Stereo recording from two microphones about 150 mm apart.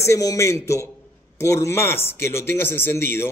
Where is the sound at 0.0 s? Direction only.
20° left (ahead or behind).